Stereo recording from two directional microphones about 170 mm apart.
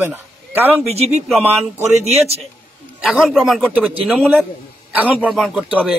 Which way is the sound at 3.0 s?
5° right (ahead or behind).